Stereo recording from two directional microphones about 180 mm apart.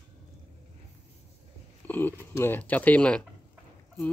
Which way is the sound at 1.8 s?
10° left (ahead or behind).